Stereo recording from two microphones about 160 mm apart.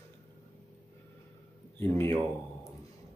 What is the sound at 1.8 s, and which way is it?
Speech, 15° left (ahead or behind).